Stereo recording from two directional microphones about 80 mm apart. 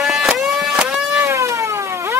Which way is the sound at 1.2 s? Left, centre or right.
Right.